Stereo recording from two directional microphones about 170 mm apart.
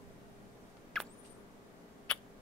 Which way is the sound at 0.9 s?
5° left (ahead or behind).